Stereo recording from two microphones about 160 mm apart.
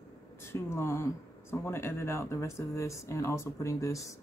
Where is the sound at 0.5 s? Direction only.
15° left (ahead or behind).